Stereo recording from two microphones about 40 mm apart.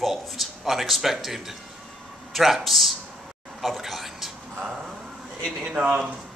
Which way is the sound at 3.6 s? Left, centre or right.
Centre.